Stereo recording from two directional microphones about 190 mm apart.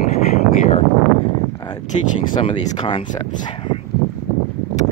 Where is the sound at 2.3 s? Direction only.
25° left (ahead or behind).